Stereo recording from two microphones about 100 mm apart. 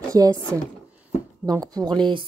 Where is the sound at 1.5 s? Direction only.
40° right (ahead or behind).